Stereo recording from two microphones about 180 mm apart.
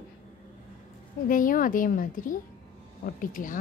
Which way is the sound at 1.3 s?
50° left (ahead or behind).